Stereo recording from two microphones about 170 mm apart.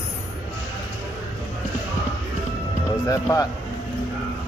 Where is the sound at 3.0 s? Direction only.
20° left (ahead or behind).